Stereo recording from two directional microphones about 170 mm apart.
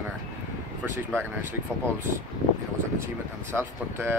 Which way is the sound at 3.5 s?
15° right (ahead or behind).